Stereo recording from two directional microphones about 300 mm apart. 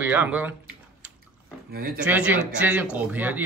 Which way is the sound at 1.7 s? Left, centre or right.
Right.